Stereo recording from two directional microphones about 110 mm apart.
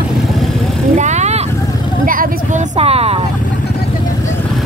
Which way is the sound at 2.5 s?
80° right.